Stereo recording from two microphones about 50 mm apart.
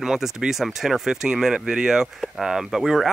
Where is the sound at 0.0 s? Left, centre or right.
Centre.